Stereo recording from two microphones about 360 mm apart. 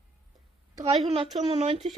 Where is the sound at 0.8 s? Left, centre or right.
Centre.